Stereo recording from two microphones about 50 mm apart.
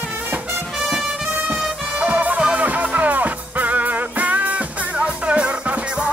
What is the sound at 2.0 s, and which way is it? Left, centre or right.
Music, right.